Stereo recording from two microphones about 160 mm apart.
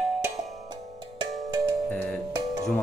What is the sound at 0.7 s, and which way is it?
Music, 25° right (ahead or behind).